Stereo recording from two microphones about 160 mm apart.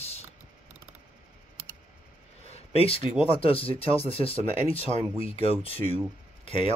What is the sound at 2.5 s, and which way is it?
Speech, 35° left (ahead or behind).